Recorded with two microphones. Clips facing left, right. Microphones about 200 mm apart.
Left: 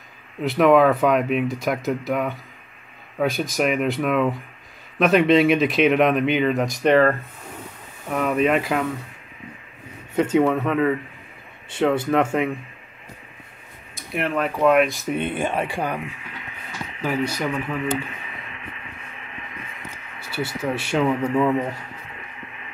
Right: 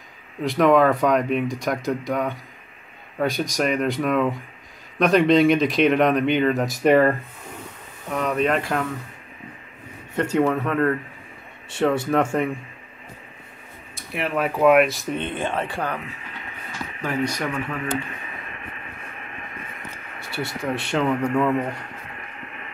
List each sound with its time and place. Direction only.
0.4 s speech: centre (ahead or behind)
8.1 s speech: 5° left (ahead or behind)
10.1 s speech: centre (ahead or behind)
14.1 s speech: 5° right (ahead or behind); by 16.0 s 10° left (ahead or behind)
17.0 s speech: 5° left (ahead or behind)
18.5 s a sound: 50° right (ahead or behind)
20.2 s speech: centre (ahead or behind)